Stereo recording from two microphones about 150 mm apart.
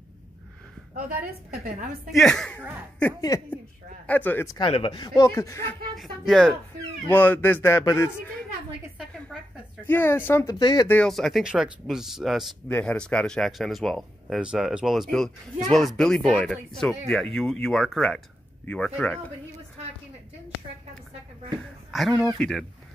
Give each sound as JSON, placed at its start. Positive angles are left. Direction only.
{"t": 0.9, "sound": "a woman's voice", "side_deg": -80}
{"t": 2.0, "sound": "speech", "side_deg": 0}
{"t": 3.2, "sound": "speech", "side_deg": 25}
{"t": 4.1, "sound": "speech", "side_deg": 10}
{"t": 4.6, "sound": "speech", "side_deg": 35}
{"t": 5.9, "sound": "speech", "side_deg": 0}
{"t": 7.1, "sound": "speech", "side_deg": 10}
{"t": 9.3, "sound": "a sound", "side_deg": 5}
{"t": 9.8, "sound": "speech", "side_deg": 15}
{"t": 10.9, "sound": "speech", "side_deg": 5}
{"t": 21.9, "sound": "speech", "side_deg": 0}